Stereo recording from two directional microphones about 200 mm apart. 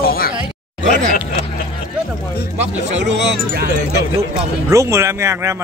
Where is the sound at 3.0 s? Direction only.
60° right (ahead or behind).